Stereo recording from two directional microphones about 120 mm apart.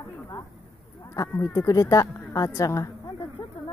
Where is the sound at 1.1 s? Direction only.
30° left (ahead or behind).